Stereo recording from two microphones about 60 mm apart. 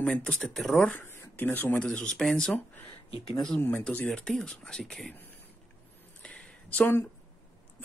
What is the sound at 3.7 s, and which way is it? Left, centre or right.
Speech, centre.